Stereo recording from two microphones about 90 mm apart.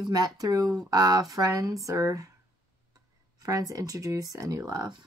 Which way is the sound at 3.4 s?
40° right (ahead or behind).